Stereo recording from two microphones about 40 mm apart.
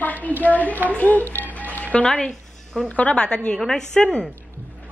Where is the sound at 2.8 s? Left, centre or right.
Left.